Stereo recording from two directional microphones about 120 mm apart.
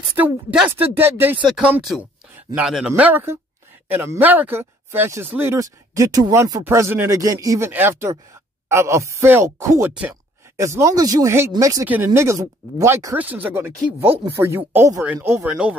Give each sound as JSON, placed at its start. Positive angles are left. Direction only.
{"t": 0.2, "sound": "a man's voice", "side_deg": -15}
{"t": 15.4, "sound": "speech", "side_deg": -10}